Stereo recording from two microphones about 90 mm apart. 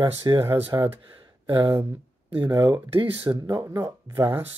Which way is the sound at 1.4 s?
65° right (ahead or behind).